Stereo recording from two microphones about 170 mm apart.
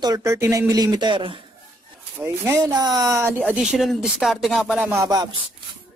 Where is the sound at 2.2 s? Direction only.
15° right (ahead or behind).